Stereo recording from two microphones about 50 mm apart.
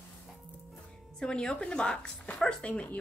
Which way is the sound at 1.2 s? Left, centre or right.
Centre.